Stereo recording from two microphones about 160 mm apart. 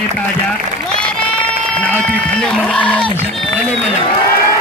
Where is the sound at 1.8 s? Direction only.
5° left (ahead or behind).